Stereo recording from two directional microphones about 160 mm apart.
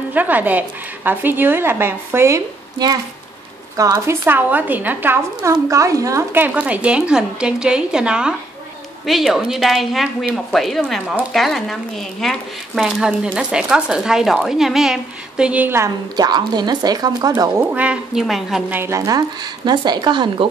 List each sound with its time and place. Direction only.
0.1 s speech: 10° right (ahead or behind)
18.7 s speech: 15° right (ahead or behind)